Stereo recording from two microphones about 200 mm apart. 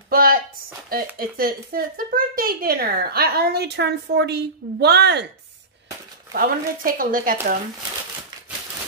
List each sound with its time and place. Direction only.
0.1 s speech: 45° right (ahead or behind)
6.3 s speech: 45° right (ahead or behind)